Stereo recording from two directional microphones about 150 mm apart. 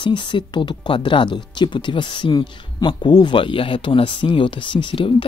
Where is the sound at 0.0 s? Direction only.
30° left (ahead or behind).